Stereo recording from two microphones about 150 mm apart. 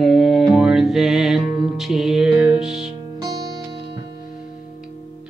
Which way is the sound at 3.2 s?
25° right (ahead or behind).